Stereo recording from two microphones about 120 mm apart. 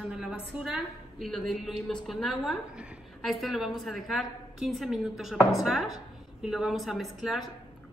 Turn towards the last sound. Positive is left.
turn(degrees=0)  # may be behind; listen again after turning